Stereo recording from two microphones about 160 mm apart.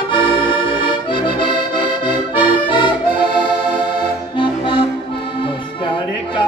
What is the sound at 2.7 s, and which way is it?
Accordion, 30° left (ahead or behind).